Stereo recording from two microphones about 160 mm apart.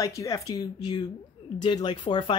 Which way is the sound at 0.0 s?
20° left (ahead or behind).